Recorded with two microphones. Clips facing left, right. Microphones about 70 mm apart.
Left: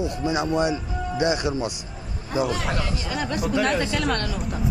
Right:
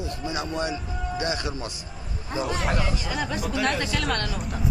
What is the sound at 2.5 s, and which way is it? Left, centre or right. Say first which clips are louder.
Speech: even; centre.